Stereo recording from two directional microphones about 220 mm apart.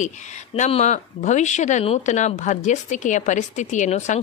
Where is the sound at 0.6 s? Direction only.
30° left (ahead or behind).